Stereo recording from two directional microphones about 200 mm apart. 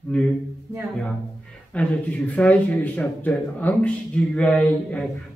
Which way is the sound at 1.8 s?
5° left (ahead or behind).